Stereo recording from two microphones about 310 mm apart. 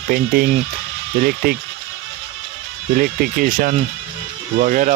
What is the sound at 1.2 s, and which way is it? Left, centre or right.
Speech, right.